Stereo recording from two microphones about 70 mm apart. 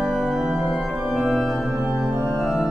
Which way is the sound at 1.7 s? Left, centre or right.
Centre.